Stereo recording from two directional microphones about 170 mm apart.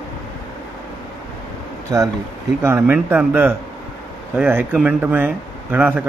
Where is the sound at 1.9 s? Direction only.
20° right (ahead or behind).